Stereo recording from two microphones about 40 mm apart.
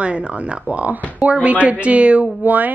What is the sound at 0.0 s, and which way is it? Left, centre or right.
A woman's voice, right.